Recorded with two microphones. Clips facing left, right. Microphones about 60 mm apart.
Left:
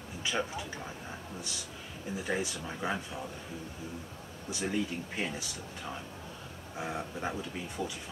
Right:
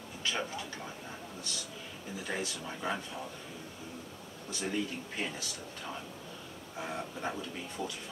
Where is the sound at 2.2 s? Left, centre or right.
Centre.